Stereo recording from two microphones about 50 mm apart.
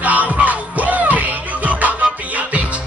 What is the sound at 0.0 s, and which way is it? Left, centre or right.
Music, right.